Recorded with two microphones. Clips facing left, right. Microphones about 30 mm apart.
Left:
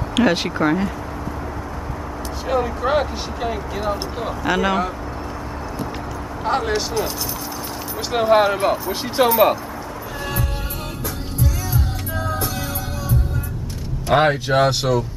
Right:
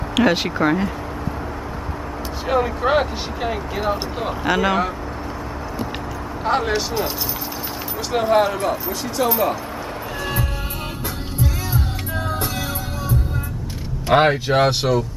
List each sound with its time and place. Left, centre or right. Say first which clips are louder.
0.1 s speech: even; centre
2.4 s speech: right 1 dB; centre
6.4 s speech: right 1 dB; centre
8.1 s speech: left 2 dB; centre
9.2 s speech: left 4 dB; left
14.0 s speech: right 1 dB; centre